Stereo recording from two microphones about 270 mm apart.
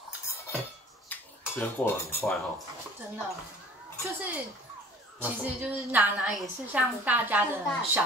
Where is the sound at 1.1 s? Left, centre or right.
Centre.